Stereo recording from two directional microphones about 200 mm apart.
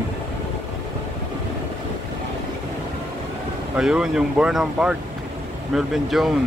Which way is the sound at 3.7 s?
5° right (ahead or behind).